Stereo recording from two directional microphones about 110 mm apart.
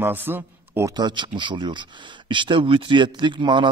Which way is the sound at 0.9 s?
45° right (ahead or behind).